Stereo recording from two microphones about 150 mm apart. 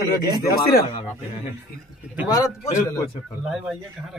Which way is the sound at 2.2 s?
25° left (ahead or behind).